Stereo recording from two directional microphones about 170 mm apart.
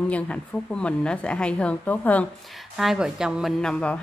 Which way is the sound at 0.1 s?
5° left (ahead or behind).